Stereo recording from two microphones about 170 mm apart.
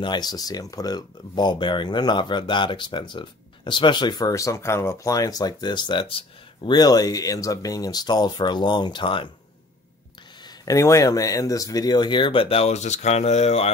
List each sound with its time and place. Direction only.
0.0 s speech: 25° left (ahead or behind)
10.4 s speech: 20° left (ahead or behind); by 13.7 s 40° left (ahead or behind)